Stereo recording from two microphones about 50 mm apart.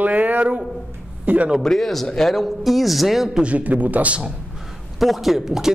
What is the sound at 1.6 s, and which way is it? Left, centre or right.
Speech, centre.